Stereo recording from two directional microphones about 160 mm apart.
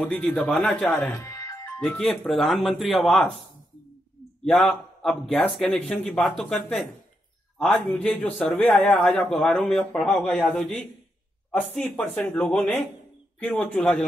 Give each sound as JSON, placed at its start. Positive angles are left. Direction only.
{"t": 0.0, "sound": "speech", "side_deg": 10}
{"t": 1.2, "sound": "music", "side_deg": 20}
{"t": 1.8, "sound": "a man's voice", "side_deg": 5}
{"t": 4.5, "sound": "a man's voice", "side_deg": 0}